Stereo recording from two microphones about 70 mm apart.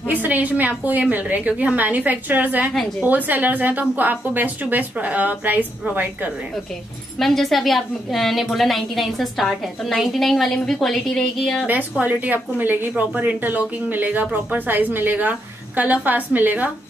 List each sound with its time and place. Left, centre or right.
0.1 s a woman's voice: right
7.2 s a woman's voice: centre
11.6 s a woman's voice: right